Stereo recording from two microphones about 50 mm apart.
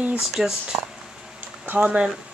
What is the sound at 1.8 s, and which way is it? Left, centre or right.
Speech, right.